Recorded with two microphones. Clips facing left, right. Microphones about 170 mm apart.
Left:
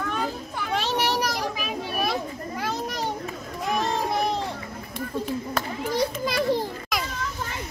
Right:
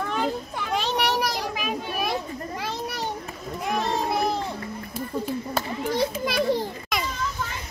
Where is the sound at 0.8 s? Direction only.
15° right (ahead or behind).